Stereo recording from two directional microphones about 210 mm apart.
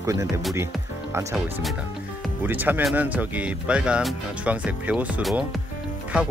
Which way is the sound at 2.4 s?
10° right (ahead or behind).